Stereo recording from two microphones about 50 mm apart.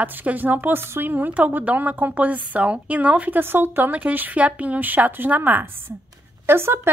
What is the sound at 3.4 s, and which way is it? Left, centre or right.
A woman's voice, right.